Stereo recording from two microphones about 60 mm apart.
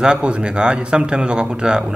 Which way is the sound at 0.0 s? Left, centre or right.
Centre.